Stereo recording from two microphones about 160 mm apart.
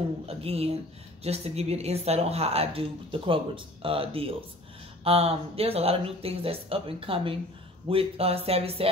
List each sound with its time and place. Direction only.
0.3 s a woman's voice: 40° right (ahead or behind)